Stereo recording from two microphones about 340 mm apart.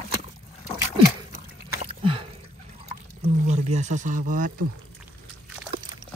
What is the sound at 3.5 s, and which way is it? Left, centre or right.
Speech, centre.